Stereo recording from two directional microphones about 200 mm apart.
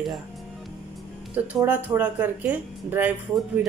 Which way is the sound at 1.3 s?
10° right (ahead or behind).